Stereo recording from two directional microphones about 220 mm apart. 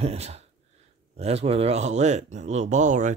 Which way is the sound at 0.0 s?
30° right (ahead or behind).